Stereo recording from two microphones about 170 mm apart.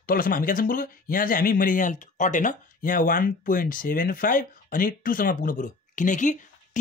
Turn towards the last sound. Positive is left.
turn(degrees=45)  # may be behind; listen again after turning